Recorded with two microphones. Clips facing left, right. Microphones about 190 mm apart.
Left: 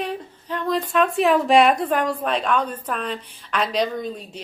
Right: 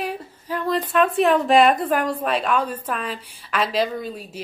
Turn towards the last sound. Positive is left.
turn(degrees=-5)  # may be behind; listen again after turning